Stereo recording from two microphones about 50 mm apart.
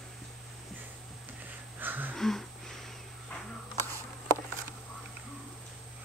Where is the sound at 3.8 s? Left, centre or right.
Right.